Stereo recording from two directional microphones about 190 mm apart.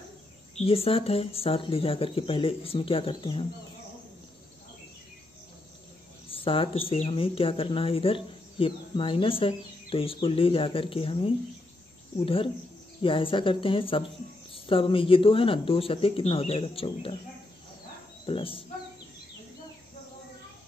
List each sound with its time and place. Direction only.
0.7 s speech: 30° left (ahead or behind)
6.2 s speech: 30° left (ahead or behind)
13.0 s speech: 25° left (ahead or behind)
18.2 s speech: 30° left (ahead or behind)